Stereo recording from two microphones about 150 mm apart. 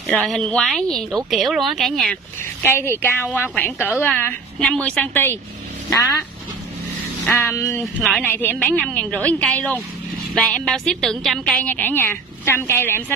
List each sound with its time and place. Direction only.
0.0 s speech: 5° left (ahead or behind)
2.6 s a woman's voice: 15° left (ahead or behind)
7.2 s a woman's voice: 15° left (ahead or behind)
7.8 s a woman's voice: 5° left (ahead or behind)